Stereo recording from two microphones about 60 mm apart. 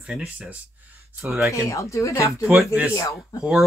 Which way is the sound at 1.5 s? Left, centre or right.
Left.